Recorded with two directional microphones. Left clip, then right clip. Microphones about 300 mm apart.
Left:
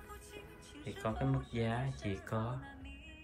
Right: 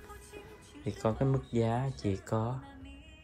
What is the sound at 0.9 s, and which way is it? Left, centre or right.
Speech, centre.